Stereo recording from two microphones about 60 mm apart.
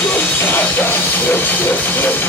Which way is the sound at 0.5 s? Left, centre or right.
Left.